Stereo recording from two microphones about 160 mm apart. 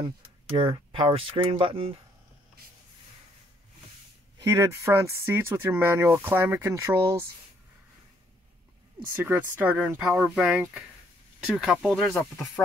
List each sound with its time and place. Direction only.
0.0 s speech: 30° right (ahead or behind)
4.4 s speech: 20° right (ahead or behind)
9.1 s speech: 15° right (ahead or behind); by 12.4 s centre (ahead or behind)